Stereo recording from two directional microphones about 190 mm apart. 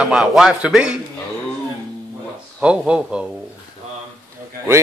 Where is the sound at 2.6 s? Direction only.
5° right (ahead or behind).